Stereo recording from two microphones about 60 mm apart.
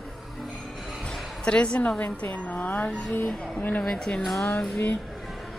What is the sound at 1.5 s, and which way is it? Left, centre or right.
A woman's voice, centre.